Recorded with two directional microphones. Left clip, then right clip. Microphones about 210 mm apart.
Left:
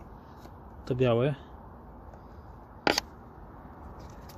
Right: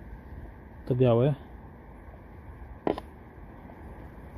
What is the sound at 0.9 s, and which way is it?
Speech, 20° left (ahead or behind).